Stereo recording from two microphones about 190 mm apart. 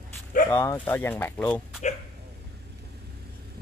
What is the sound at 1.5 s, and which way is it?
Speech, 35° left (ahead or behind).